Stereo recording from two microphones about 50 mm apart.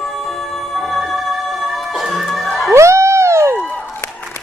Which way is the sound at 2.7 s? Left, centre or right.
Right.